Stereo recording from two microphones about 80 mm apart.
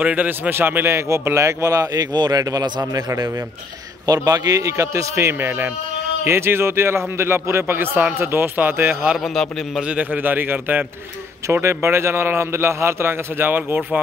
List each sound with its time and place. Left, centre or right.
0.0 s a man's voice: centre; by 2.0 s right
2.1 s a man's voice: right
9.8 s a man's voice: centre